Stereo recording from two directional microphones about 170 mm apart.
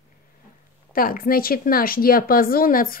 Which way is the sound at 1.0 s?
55° left (ahead or behind).